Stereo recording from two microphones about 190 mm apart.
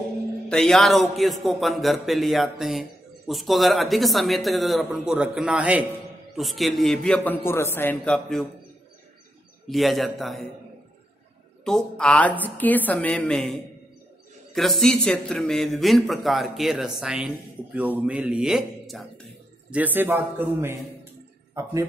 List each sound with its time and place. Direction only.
0.5 s speech: 5° left (ahead or behind)
9.7 s speech: centre (ahead or behind)
11.6 s a man's voice: 5° left (ahead or behind); by 21.7 s 15° right (ahead or behind)